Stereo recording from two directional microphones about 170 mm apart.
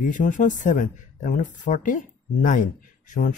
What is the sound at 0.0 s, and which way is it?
Speech, 50° left (ahead or behind).